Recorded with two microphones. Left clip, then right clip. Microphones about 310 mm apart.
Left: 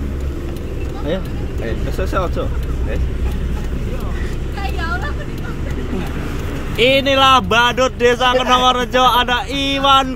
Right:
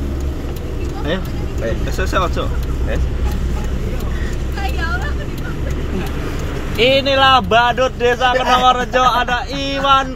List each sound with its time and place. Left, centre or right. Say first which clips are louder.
2.0 s speech: right 2 dB; centre
6.8 s speech: even; left